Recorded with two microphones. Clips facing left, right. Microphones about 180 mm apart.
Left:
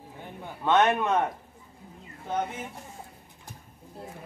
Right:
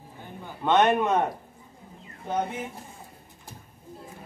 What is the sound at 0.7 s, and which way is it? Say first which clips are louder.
Speech: right 2 dB; 20° right (ahead or behind).